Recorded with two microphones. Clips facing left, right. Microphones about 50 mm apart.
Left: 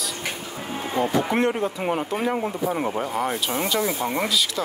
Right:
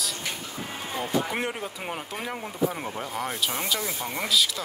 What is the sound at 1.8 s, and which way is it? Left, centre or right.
Speech, centre.